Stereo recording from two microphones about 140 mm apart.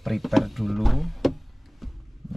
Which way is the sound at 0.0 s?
Centre (ahead or behind).